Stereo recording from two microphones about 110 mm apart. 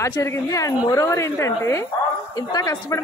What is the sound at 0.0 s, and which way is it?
A woman's voice, 30° left (ahead or behind).